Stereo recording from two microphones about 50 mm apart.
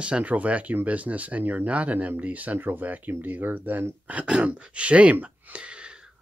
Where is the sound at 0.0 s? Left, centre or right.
Right.